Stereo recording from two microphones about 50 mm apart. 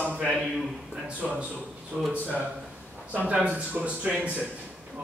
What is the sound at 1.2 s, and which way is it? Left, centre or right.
Speech, centre.